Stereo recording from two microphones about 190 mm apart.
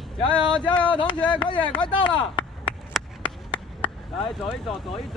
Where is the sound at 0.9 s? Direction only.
25° left (ahead or behind).